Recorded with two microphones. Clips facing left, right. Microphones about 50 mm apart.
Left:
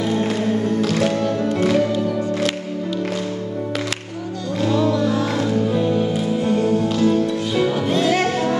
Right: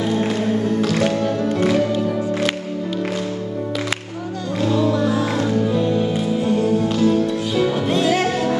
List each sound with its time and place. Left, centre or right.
0.2 s music: centre
1.9 s music: right
4.9 s music: centre
5.7 s music: centre
6.1 s music: centre